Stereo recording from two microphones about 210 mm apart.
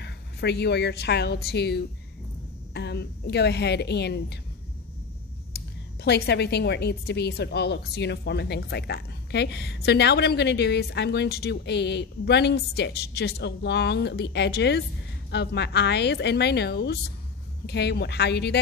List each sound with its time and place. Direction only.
0.0 s a woman's voice: 50° left (ahead or behind)
6.0 s a woman's voice: 50° left (ahead or behind)